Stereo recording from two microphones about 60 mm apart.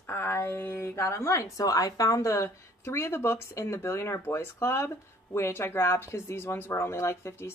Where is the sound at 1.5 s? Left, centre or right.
Left.